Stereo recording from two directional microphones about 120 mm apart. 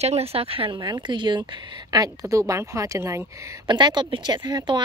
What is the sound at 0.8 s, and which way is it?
A woman's voice, 35° right (ahead or behind).